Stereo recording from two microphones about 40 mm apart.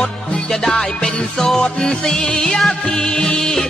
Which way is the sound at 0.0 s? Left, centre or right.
Centre.